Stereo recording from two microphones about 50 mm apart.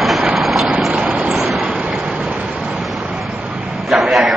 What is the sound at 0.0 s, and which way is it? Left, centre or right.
Vehicle, centre.